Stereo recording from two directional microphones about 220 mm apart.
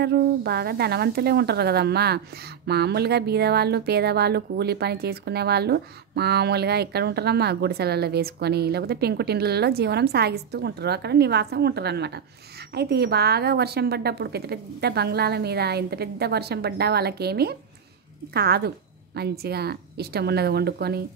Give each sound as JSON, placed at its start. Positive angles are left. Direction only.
{"t": 0.0, "sound": "a woman's voice", "side_deg": -45}